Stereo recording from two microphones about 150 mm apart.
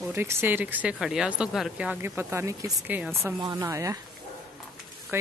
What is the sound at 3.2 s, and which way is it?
Speech, 25° right (ahead or behind).